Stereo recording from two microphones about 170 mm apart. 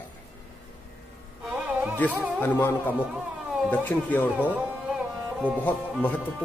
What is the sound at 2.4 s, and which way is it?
A man's voice, 10° left (ahead or behind).